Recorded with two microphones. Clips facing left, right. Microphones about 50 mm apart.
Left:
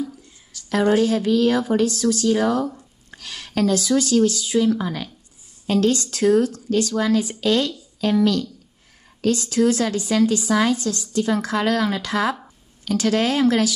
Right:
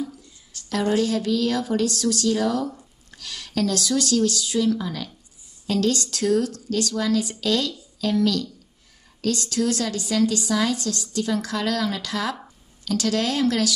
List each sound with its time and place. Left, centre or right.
0.7 s speech: left
10.8 s speech: left